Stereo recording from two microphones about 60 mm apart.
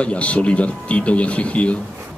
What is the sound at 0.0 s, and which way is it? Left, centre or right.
Speech, left.